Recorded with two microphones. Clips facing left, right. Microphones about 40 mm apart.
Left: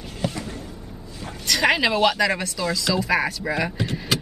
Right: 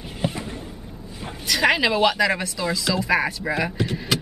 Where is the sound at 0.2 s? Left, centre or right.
Centre.